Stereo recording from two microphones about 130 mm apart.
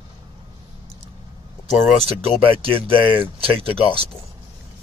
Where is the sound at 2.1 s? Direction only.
45° right (ahead or behind).